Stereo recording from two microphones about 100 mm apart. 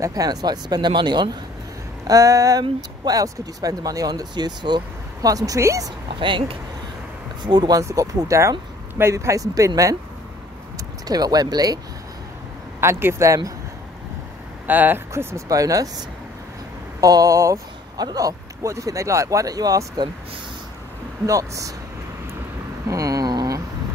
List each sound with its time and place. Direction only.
0.0 s speech: 40° right (ahead or behind)
2.0 s speech: 35° right (ahead or behind)
6.0 s speech: 55° right (ahead or behind)
7.4 s speech: 45° right (ahead or behind)
7.8 s speech: 35° right (ahead or behind)
11.1 s speech: 40° right (ahead or behind)
12.8 s speech: 30° right (ahead or behind)
14.7 s speech: 20° right (ahead or behind); by 20.1 s 35° right (ahead or behind)
21.3 s speech: 35° right (ahead or behind)
22.8 s a sound: 35° right (ahead or behind)